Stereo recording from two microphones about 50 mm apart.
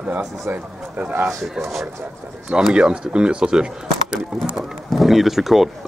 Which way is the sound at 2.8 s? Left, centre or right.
Centre.